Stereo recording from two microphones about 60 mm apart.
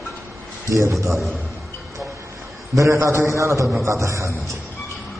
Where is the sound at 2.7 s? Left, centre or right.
Right.